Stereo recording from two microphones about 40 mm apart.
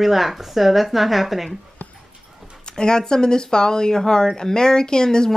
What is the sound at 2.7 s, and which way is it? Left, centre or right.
Speech, centre.